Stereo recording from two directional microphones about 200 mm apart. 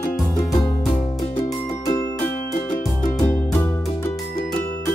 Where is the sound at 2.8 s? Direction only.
Centre (ahead or behind).